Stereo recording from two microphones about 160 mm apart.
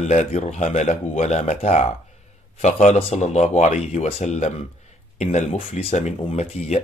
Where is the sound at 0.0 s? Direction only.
50° left (ahead or behind).